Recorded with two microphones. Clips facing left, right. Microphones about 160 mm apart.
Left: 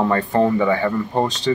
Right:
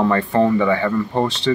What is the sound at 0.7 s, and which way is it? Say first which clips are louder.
Speech: right 1 dB; 30° left (ahead or behind).